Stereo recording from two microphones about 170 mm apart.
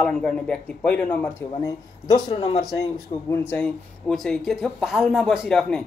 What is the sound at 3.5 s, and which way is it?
Speech, 5° left (ahead or behind).